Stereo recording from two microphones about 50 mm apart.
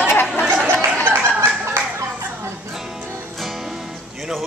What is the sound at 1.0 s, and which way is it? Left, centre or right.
Fowl, right.